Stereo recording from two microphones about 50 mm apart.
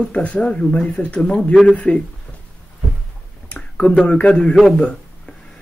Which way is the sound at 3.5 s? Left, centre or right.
Left.